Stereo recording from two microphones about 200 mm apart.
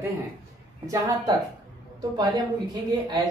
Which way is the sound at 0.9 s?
15° right (ahead or behind).